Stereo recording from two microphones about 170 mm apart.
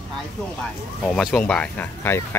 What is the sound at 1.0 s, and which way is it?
Speech, 5° left (ahead or behind).